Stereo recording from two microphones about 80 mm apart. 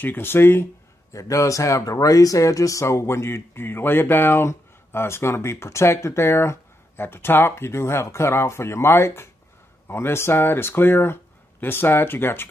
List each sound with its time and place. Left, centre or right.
0.0 s speech: left
1.1 s speech: left